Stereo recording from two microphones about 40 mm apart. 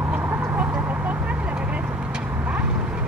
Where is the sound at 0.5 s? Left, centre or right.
Right.